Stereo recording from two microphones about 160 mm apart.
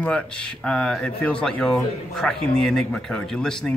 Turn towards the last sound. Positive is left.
turn(degrees=5)  # may be behind; listen again after turning